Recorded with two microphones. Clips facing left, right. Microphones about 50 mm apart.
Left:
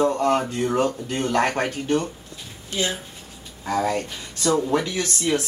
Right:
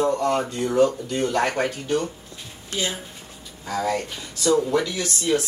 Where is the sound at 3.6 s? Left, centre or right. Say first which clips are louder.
Left 2 dB; left.